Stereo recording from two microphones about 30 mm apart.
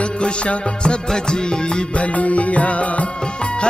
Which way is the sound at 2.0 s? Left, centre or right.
Left.